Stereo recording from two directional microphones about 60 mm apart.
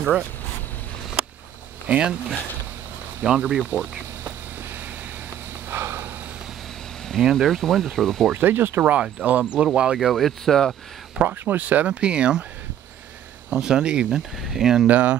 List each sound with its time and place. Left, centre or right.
1.9 s speech: centre
3.3 s speech: centre
5.7 s snort: right
7.1 s speech: centre
8.3 s speech: right
8.8 s speech: right
9.9 s speech: centre
11.2 s speech: right; by 12.4 s centre
13.5 s speech: centre
14.9 s speech: right